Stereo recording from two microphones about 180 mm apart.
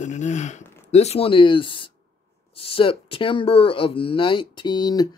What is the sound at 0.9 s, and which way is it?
Speech, 35° left (ahead or behind).